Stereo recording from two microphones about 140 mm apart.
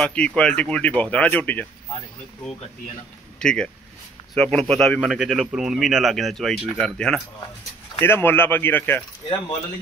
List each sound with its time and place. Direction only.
0.0 s speech: 5° left (ahead or behind)
3.3 s speech: 5° left (ahead or behind)
8.0 s speech: 15° left (ahead or behind)